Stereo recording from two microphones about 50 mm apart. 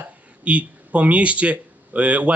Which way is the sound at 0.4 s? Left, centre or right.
Right.